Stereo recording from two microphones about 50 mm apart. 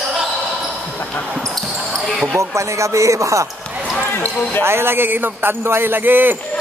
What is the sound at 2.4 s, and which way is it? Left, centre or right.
Speech, right.